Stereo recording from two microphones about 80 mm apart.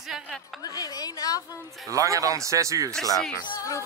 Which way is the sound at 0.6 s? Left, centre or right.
Left.